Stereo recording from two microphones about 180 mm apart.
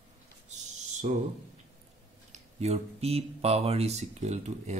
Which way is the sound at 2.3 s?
35° right (ahead or behind).